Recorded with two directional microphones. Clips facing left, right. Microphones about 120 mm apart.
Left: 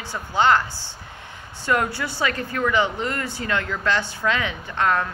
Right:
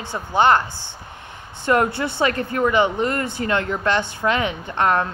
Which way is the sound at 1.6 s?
25° right (ahead or behind).